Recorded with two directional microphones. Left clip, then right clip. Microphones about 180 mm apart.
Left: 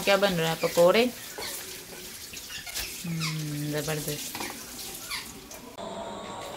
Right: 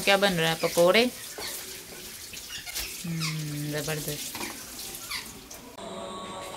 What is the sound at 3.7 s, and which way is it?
Speech, centre (ahead or behind).